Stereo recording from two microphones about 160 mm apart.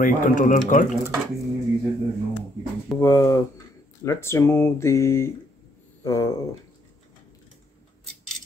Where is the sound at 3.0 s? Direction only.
20° left (ahead or behind).